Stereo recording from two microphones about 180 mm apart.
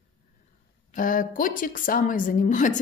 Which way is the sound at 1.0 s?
50° left (ahead or behind).